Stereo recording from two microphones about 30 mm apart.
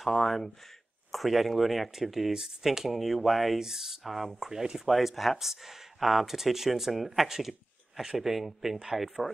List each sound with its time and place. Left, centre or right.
0.0 s speech: centre
2.3 s speech: centre
2.9 s speech: centre
3.5 s speech: centre
4.0 s speech: centre
4.4 s speech: centre
4.8 s speech: centre
8.3 s speech: centre